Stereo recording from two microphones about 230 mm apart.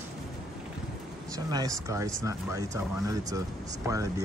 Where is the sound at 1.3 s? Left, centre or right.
Centre.